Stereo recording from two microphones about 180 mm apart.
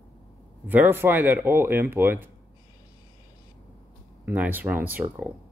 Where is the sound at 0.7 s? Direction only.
10° right (ahead or behind).